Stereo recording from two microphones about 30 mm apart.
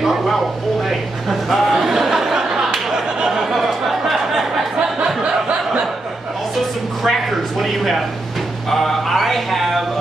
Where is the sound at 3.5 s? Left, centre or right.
Centre.